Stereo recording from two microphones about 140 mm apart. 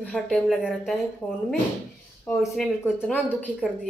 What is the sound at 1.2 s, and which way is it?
A woman's voice, 15° left (ahead or behind).